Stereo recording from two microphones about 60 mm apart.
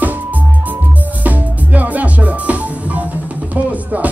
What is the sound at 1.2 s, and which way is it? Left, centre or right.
Music, right.